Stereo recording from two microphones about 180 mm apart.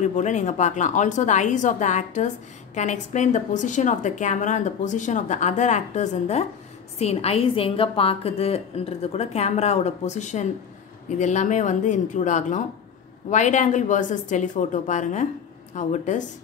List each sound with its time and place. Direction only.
0.0 s a woman's voice: 40° left (ahead or behind)